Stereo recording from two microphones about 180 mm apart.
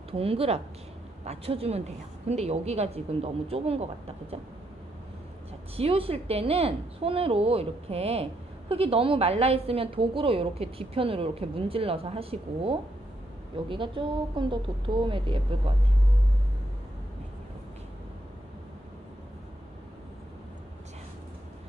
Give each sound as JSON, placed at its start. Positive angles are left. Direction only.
{"t": 0.1, "sound": "speech", "side_deg": -35}
{"t": 5.8, "sound": "speech", "side_deg": -30}